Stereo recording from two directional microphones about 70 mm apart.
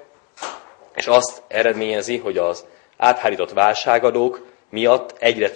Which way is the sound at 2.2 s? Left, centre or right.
Left.